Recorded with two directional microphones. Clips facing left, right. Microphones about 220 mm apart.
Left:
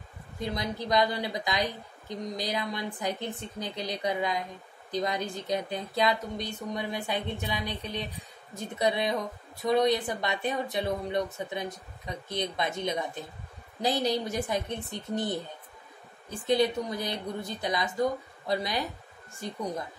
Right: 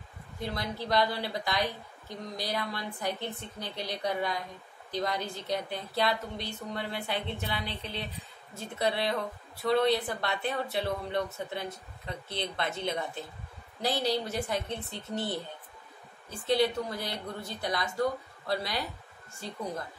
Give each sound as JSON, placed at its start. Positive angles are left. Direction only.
{"t": 0.4, "sound": "a woman's voice", "side_deg": 15}
{"t": 16.3, "sound": "a woman's voice", "side_deg": 15}